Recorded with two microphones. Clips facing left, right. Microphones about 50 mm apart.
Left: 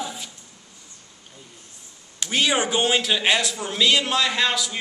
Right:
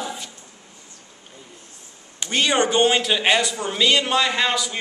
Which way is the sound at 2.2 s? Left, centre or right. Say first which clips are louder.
Right 2 dB; centre.